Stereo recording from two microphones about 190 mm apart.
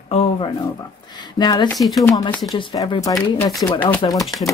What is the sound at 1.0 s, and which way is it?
Speech, 20° left (ahead or behind).